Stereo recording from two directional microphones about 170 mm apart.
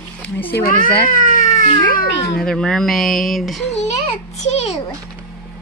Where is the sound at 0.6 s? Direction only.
50° left (ahead or behind).